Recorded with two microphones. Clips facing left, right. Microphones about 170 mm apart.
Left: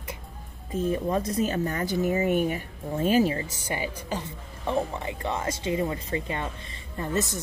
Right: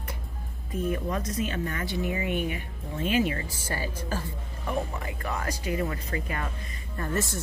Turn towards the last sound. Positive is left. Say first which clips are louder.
# left 2 dB
turn(degrees=20)  # may be behind; listen again after turning